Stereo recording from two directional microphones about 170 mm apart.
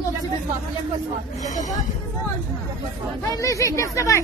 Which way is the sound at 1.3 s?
45° left (ahead or behind).